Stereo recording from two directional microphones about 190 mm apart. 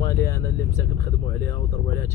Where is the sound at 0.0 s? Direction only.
15° left (ahead or behind).